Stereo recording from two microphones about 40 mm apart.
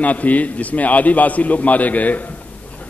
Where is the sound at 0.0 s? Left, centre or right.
Left.